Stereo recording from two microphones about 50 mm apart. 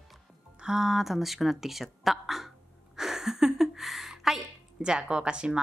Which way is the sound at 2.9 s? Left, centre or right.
Centre.